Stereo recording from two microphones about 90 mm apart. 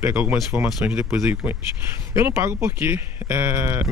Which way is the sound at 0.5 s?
20° right (ahead or behind).